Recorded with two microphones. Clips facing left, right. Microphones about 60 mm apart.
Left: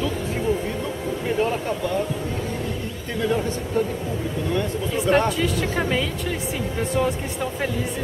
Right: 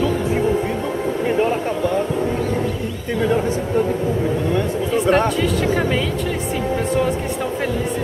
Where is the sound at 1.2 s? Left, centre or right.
Right.